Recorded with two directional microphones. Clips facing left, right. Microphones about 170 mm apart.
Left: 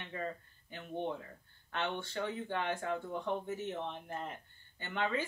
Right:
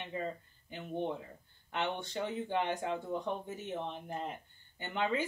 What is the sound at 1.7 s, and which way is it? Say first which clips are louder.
Speech: right 2 dB; 15° right (ahead or behind).